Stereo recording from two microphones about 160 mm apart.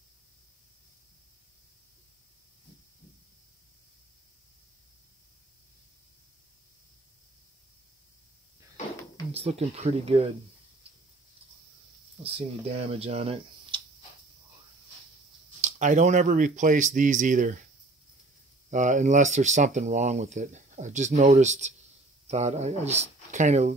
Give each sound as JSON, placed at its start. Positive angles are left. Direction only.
{"t": 9.3, "sound": "speech", "side_deg": -40}
{"t": 12.2, "sound": "speech", "side_deg": -40}
{"t": 15.6, "sound": "speech", "side_deg": -50}
{"t": 18.7, "sound": "speech", "side_deg": -50}